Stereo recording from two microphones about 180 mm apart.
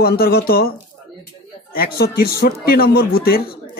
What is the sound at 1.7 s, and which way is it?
Speech, 55° left (ahead or behind).